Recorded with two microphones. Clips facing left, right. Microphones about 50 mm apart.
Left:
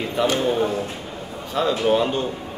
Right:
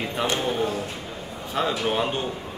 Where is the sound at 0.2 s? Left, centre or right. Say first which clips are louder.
Left 6 dB; right.